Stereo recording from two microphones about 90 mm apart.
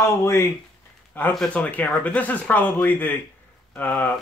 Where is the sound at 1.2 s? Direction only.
20° left (ahead or behind).